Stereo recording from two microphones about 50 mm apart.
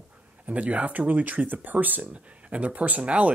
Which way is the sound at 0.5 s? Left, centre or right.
Right.